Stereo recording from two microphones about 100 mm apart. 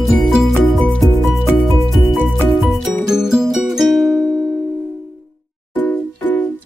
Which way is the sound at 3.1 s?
5° right (ahead or behind).